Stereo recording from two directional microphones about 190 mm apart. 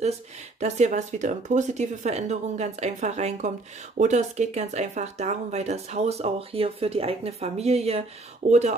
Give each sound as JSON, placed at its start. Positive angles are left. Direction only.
{"t": 0.6, "sound": "speech", "side_deg": -40}